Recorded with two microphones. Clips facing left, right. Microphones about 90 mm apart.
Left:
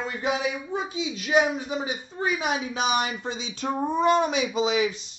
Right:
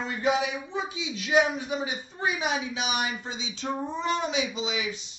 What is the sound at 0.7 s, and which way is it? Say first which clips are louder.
A woman's voice: left 3 dB; 35° left (ahead or behind).